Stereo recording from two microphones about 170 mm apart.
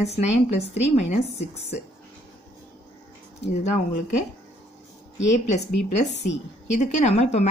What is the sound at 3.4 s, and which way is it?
Speech, 40° left (ahead or behind).